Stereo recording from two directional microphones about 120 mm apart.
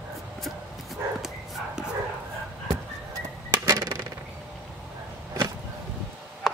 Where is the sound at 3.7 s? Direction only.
25° right (ahead or behind).